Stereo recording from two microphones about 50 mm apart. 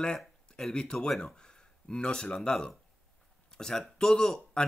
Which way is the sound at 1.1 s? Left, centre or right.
Centre.